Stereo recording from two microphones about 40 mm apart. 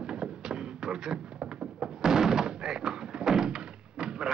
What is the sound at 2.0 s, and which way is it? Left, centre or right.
Thunk, centre.